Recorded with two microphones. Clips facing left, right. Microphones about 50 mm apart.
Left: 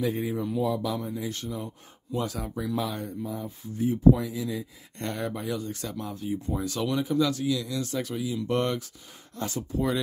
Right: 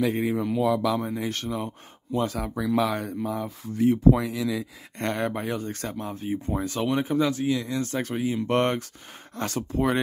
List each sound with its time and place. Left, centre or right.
0.0 s speech: right
1.0 s speech: right
2.1 s speech: right
5.0 s speech: right